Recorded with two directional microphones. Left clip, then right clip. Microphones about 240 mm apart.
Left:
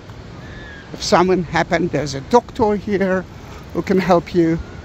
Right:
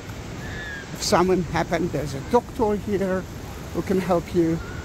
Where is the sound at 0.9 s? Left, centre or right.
Centre.